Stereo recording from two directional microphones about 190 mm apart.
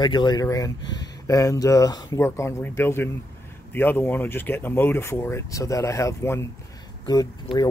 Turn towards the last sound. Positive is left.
turn(degrees=20)  # may be behind; listen again after turning